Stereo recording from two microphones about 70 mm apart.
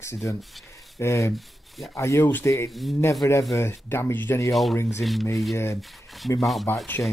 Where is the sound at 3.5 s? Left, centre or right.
Left.